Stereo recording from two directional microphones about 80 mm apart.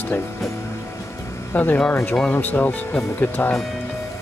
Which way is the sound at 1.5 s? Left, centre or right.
Left.